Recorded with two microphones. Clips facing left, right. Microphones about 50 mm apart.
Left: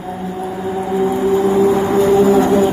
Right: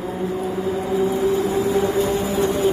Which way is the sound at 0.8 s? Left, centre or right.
Left.